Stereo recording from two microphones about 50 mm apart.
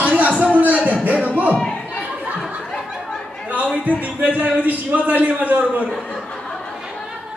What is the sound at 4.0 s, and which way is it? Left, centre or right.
A man's voice, right.